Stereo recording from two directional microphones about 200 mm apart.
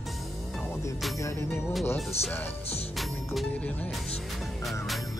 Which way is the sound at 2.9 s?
Centre (ahead or behind).